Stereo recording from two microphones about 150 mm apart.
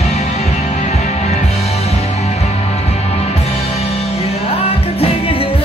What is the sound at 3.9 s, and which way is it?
Music, 45° left (ahead or behind).